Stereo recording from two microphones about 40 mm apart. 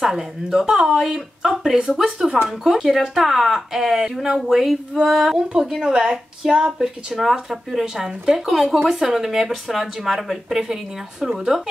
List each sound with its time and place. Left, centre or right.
0.0 s speech: centre
8.5 s speech: centre